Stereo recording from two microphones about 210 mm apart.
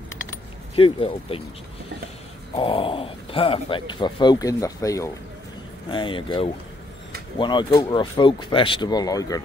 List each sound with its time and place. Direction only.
0.7 s speech: 25° left (ahead or behind)
2.5 s speech: 25° left (ahead or behind)